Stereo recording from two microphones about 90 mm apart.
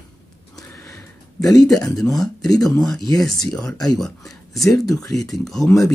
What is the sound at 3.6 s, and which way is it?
Speech, 45° left (ahead or behind).